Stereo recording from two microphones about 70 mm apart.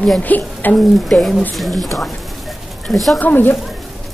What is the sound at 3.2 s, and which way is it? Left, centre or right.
Speech, left.